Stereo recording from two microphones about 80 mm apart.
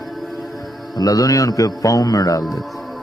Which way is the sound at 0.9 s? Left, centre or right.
Left.